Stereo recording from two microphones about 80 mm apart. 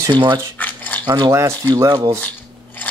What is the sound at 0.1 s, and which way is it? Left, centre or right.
Speech, right.